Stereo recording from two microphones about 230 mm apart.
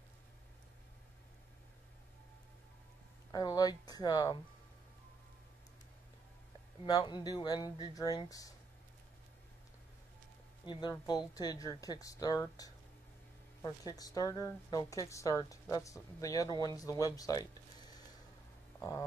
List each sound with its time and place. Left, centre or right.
3.3 s speech: centre
6.9 s speech: centre
10.7 s speech: centre
18.8 s a sound: centre